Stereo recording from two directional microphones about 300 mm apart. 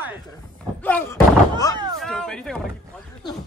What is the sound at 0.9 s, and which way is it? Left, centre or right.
Speech, centre.